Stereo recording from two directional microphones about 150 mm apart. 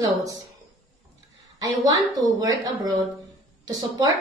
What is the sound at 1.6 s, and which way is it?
A woman's voice, 25° right (ahead or behind).